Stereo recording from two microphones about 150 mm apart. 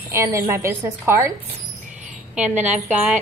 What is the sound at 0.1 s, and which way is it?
A woman's voice, 15° right (ahead or behind).